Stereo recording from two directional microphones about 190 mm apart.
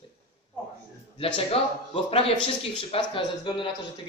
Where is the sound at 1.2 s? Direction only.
30° left (ahead or behind).